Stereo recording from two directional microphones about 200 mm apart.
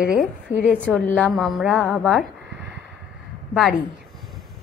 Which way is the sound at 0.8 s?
5° left (ahead or behind).